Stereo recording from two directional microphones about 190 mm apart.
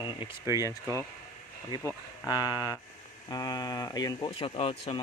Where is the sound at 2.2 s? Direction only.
20° left (ahead or behind).